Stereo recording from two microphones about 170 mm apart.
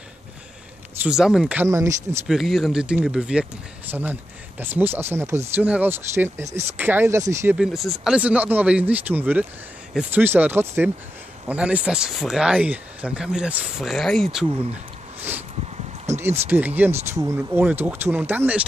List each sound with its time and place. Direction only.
1.0 s speech: 5° right (ahead or behind)
1.7 s speech: 15° right (ahead or behind)
2.2 s speech: centre (ahead or behind); by 7.5 s 15° right (ahead or behind)
7.5 s speech: centre (ahead or behind)
15.1 s sniff: 10° right (ahead or behind)
16.1 s speech: 15° right (ahead or behind)